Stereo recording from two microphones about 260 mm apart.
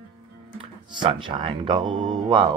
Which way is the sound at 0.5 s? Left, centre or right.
Right.